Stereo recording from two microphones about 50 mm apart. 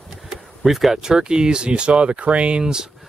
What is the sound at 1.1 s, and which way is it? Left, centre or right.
Speech, centre.